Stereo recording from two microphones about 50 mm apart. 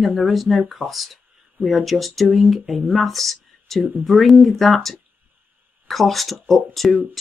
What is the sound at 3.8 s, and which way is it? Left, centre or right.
Speech, right.